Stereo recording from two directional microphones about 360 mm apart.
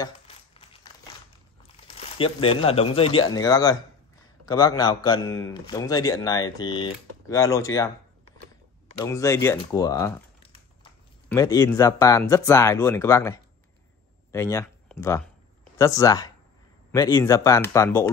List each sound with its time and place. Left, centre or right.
0.0 s crumpling: centre
2.0 s a man's voice: centre
9.0 s a man's voice: centre